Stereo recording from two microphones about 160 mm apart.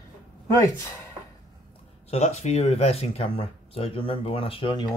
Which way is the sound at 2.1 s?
45° left (ahead or behind).